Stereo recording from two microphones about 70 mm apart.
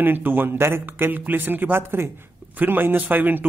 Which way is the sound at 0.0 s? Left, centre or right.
Right.